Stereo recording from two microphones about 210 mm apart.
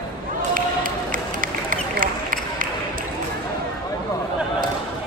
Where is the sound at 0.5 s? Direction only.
40° right (ahead or behind).